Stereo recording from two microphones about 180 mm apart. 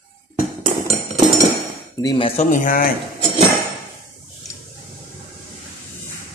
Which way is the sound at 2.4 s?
45° left (ahead or behind).